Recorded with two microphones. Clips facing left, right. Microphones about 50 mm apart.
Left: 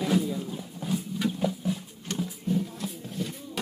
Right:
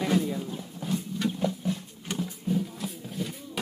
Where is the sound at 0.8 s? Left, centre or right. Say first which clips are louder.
Even; centre.